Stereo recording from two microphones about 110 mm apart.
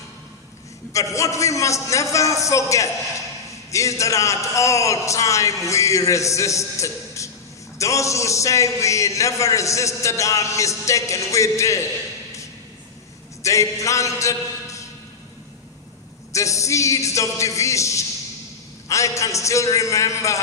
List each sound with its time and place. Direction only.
0.9 s a man's voice: 30° left (ahead or behind)
13.4 s a man's voice: 30° left (ahead or behind)
16.3 s a man's voice: 30° left (ahead or behind)